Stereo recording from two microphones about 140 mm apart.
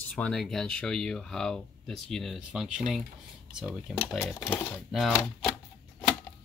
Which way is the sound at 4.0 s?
15° left (ahead or behind).